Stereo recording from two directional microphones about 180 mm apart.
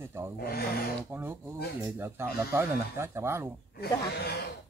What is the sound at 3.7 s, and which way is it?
Speech, 60° left (ahead or behind).